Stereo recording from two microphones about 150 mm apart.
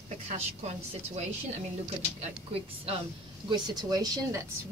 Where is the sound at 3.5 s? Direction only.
30° right (ahead or behind).